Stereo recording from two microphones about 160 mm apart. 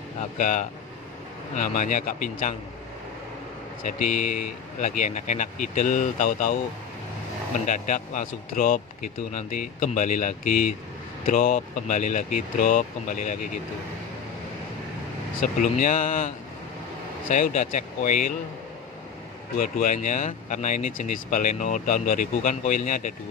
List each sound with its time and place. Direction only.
0.4 s speech: 55° left (ahead or behind)
3.8 s speech: 55° left (ahead or behind)
7.6 s speech: 50° left (ahead or behind)
15.4 s speech: 55° left (ahead or behind)
17.3 s speech: 50° left (ahead or behind)
19.6 s speech: 55° left (ahead or behind)